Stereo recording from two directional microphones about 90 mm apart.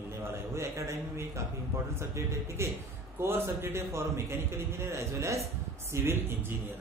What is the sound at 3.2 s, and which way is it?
A man's voice, 25° right (ahead or behind).